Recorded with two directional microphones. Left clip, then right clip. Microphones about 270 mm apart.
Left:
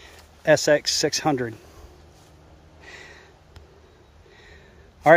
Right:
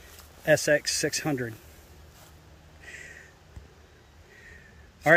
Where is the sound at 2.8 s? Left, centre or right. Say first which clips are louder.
Left 1 dB; centre.